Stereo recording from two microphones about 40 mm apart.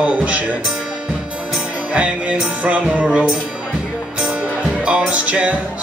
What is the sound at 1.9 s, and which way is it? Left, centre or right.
Music, right.